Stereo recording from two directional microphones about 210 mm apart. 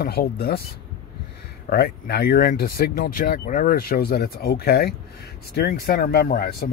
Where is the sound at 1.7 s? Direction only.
50° left (ahead or behind).